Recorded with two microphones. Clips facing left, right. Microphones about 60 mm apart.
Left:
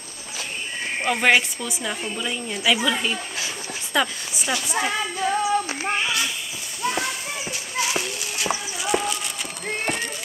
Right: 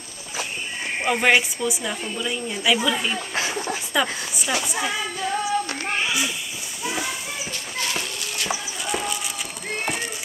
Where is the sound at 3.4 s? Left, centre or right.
Right.